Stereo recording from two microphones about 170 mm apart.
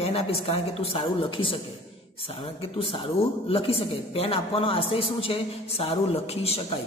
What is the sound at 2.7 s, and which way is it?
Speech, 30° left (ahead or behind).